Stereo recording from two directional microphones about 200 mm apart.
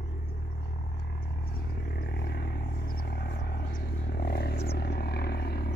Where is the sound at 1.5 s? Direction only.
50° left (ahead or behind).